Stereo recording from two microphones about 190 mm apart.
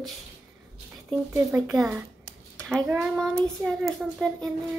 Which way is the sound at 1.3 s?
10° right (ahead or behind).